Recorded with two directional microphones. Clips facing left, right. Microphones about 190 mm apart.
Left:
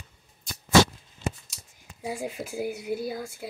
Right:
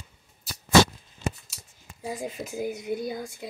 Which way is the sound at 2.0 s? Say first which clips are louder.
Left 1 dB; 10° left (ahead or behind).